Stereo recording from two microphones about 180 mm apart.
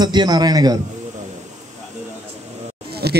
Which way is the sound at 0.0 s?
25° right (ahead or behind).